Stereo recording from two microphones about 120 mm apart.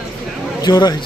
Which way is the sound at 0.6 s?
35° left (ahead or behind).